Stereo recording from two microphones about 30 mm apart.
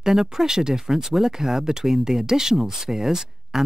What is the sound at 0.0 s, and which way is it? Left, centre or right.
Speech, centre.